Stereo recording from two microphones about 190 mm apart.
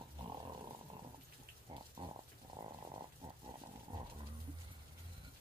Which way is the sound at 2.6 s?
25° right (ahead or behind).